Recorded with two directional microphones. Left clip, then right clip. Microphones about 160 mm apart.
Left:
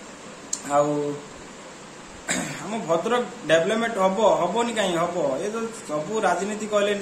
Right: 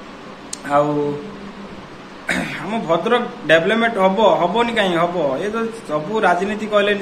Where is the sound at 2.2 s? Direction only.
15° left (ahead or behind).